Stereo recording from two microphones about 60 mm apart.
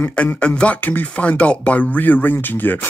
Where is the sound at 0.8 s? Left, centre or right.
Left.